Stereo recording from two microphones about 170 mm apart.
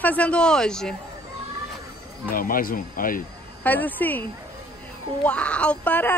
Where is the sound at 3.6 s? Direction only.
10° left (ahead or behind).